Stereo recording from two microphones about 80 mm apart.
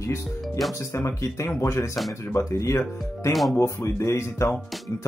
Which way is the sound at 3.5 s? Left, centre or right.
Left.